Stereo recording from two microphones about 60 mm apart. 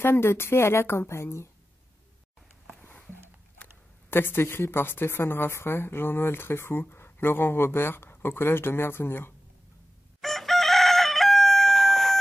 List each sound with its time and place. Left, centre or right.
0.0 s a woman's voice: left
4.1 s a woman's voice: left
10.2 s chicken: centre